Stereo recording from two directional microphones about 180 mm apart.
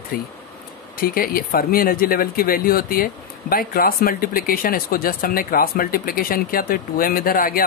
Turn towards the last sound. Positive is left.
turn(degrees=50)  # may be behind; listen again after turning